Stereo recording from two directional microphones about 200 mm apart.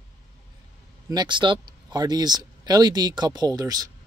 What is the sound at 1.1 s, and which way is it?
Speech, 20° right (ahead or behind).